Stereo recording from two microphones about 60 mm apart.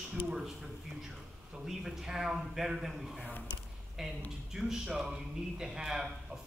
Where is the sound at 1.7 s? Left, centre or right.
Centre.